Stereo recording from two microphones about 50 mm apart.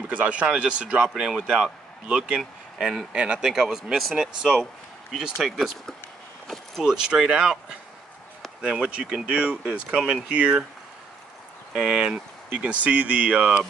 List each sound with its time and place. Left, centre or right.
0.1 s speech: right
6.4 s vehicle: centre
6.8 s speech: centre
8.7 s speech: centre
11.7 s speech: centre
12.5 s speech: right